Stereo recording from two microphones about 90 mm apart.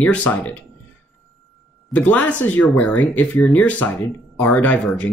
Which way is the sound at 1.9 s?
20° left (ahead or behind).